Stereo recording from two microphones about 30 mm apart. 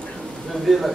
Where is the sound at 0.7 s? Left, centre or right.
Centre.